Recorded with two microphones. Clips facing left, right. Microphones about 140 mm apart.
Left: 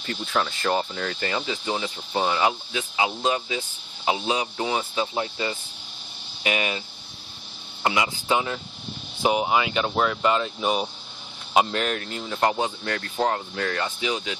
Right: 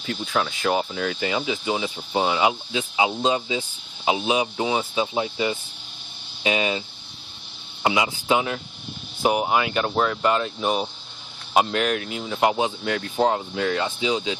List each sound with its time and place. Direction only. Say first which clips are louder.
0.0 s speech: right 1 dB; centre (ahead or behind); by 6.8 s 20° right (ahead or behind)
7.8 s speech: right 2 dB; 15° right (ahead or behind)
9.2 s speech: right 1 dB; centre (ahead or behind); by 14.3 s 20° right (ahead or behind)